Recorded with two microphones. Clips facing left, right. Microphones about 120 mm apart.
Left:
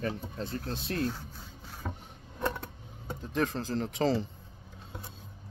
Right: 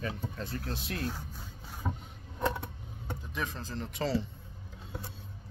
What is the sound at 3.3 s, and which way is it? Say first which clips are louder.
Speech: left 8 dB; 45° left (ahead or behind).